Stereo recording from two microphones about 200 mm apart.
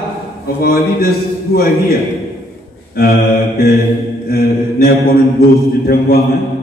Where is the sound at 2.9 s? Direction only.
50° left (ahead or behind).